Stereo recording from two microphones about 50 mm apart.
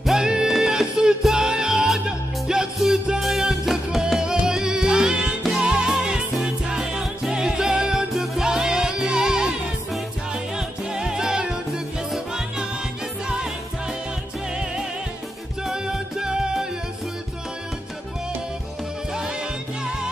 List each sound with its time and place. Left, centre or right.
0.0 s music: centre
15.6 s music: centre
19.8 s music: centre